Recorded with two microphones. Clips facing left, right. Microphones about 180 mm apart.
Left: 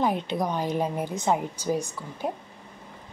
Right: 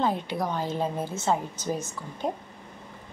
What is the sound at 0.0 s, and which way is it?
A woman's voice, 15° left (ahead or behind).